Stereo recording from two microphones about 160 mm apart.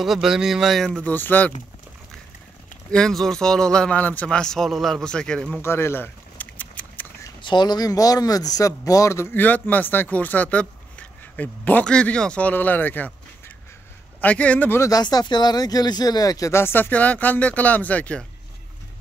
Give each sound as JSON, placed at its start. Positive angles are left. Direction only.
{"t": 0.0, "sound": "speech", "side_deg": 0}
{"t": 2.9, "sound": "speech", "side_deg": 5}
{"t": 5.6, "sound": "a sound", "side_deg": 15}
{"t": 7.4, "sound": "speech", "side_deg": 25}
{"t": 14.2, "sound": "speech", "side_deg": 10}